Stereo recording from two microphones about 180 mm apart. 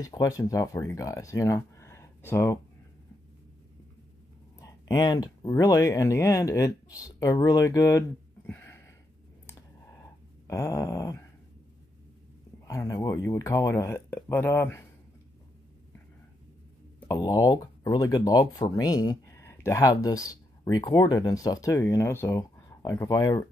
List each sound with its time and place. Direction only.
0.0 s speech: 20° left (ahead or behind)
4.6 s speech: 20° left (ahead or behind)
8.5 s a sound: 15° left (ahead or behind)
10.4 s speech: 15° left (ahead or behind)
12.6 s speech: 20° left (ahead or behind)
17.1 s speech: 20° left (ahead or behind)